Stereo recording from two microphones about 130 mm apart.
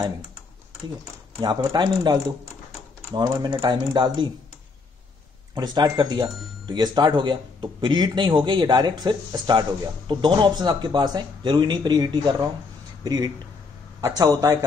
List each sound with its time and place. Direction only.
1.4 s speech: 30° right (ahead or behind)
5.5 s speech: 35° right (ahead or behind)